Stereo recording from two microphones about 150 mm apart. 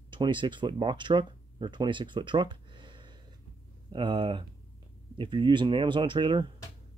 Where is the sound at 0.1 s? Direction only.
30° right (ahead or behind).